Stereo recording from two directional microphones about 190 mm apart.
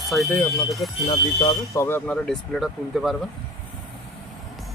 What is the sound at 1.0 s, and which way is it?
Speech, 25° left (ahead or behind).